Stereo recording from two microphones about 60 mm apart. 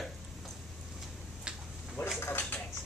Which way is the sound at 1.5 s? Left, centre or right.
Centre.